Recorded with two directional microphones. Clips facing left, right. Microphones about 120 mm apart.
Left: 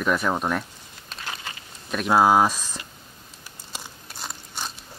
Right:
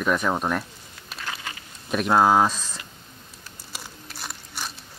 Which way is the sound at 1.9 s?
5° left (ahead or behind).